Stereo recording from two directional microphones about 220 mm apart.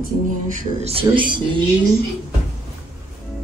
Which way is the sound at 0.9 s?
20° right (ahead or behind).